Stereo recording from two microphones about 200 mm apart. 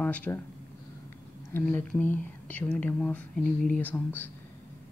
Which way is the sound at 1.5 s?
10° left (ahead or behind).